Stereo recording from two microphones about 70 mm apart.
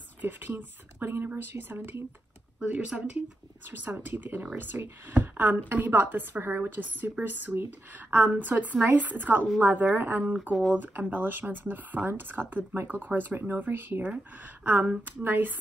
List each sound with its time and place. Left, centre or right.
0.2 s a woman's voice: right
2.6 s a woman's voice: centre
10.8 s a woman's voice: right